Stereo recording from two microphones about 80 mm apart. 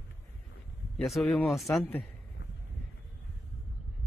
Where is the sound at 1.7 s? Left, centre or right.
Left.